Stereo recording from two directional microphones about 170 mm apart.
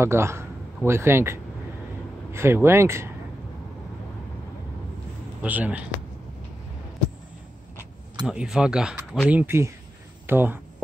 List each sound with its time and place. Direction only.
0.0 s speech: 15° right (ahead or behind)
5.4 s speech: 10° right (ahead or behind)
8.3 s speech: 5° right (ahead or behind)